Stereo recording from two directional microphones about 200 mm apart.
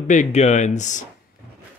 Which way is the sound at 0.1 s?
35° left (ahead or behind).